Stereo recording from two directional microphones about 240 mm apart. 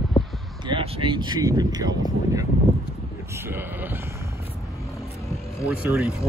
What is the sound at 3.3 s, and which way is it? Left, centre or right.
Speech, centre.